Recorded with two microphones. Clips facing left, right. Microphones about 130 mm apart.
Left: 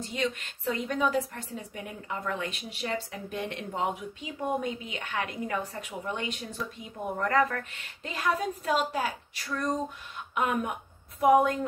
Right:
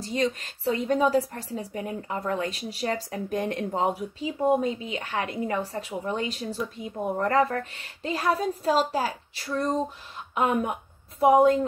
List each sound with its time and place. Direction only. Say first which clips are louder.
0.0 s a woman's voice: right 5 dB; 35° right (ahead or behind)